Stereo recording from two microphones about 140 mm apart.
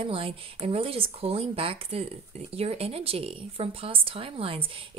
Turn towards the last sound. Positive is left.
turn(degrees=-40)  # may be behind; listen again after turning